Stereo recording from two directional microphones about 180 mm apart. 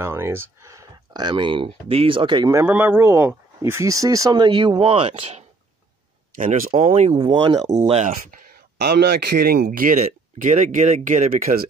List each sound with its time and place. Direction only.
0.0 s speech: 15° right (ahead or behind)
2.6 s speech: 10° right (ahead or behind); by 5.4 s 35° right (ahead or behind)
6.3 s speech: 45° right (ahead or behind); by 7.8 s 20° right (ahead or behind)
7.8 s speech: 35° right (ahead or behind)
8.8 s speech: 65° right (ahead or behind); by 11.6 s 45° right (ahead or behind)